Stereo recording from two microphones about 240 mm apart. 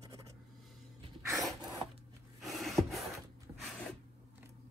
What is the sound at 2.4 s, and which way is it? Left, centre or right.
Rub, centre.